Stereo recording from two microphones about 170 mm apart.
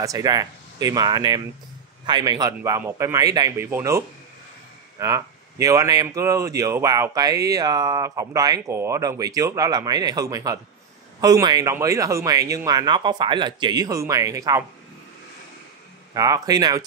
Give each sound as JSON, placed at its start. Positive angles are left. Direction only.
{"t": 0.0, "sound": "speech", "side_deg": -20}
{"t": 16.1, "sound": "speech", "side_deg": -20}